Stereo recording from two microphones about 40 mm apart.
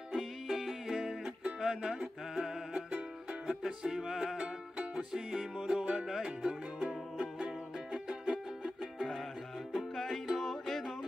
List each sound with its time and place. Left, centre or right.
0.1 s music: centre
1.6 s music: centre
2.3 s music: centre
2.9 s music: right
3.6 s music: centre
9.8 s music: centre